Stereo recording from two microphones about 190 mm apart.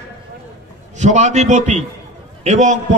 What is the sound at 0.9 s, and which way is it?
A man's voice, 40° right (ahead or behind).